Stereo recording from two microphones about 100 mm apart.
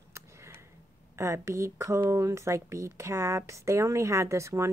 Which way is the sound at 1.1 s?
30° right (ahead or behind).